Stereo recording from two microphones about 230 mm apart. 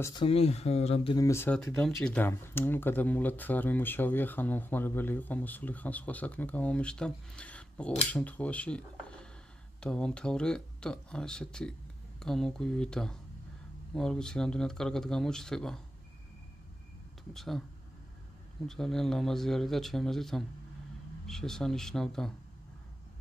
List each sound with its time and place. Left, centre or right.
0.0 s speech: centre
1.1 s speech: centre
17.3 s speech: centre
18.7 s speech: centre